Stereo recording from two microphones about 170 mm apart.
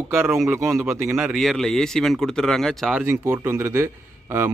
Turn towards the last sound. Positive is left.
turn(degrees=-15)  # may be behind; listen again after turning